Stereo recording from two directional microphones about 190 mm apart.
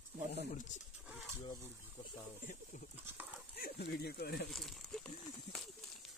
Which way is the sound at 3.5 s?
55° left (ahead or behind).